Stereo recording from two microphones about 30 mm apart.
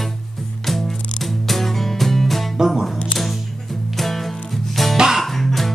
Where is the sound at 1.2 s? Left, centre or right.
Centre.